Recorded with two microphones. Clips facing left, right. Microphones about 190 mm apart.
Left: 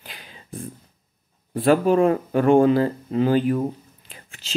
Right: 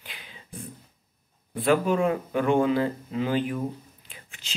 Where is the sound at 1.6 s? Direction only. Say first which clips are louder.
Left 5 dB; 35° left (ahead or behind).